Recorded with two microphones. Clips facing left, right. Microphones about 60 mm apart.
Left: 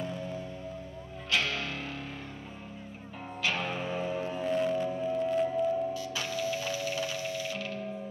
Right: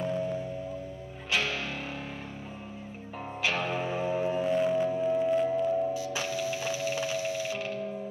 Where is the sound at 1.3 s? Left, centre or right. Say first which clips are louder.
Right 1 dB; centre.